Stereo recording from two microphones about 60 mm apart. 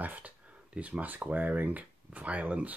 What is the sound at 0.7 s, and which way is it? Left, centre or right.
Speech, right.